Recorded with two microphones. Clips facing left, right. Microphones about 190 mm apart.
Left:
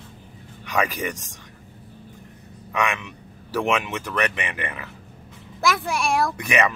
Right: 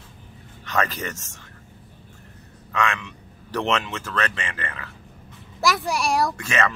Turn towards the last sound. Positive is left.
turn(degrees=15)  # may be behind; listen again after turning